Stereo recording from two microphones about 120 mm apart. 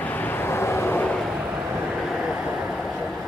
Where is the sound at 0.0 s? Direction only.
15° left (ahead or behind).